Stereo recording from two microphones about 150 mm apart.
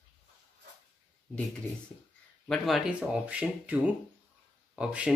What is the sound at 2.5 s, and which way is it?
Speech, 5° right (ahead or behind).